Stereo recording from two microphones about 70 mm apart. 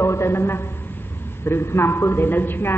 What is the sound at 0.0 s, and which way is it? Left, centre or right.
A man's voice, left.